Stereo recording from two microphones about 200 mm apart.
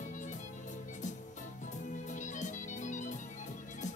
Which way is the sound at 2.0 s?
40° left (ahead or behind).